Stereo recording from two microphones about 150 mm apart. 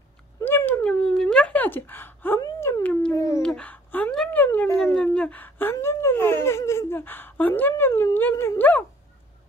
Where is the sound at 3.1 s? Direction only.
20° left (ahead or behind).